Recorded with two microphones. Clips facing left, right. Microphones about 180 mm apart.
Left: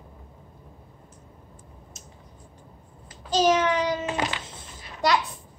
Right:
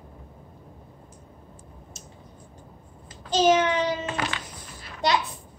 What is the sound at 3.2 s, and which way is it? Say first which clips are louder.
Child singing: right 1 dB; 25° right (ahead or behind).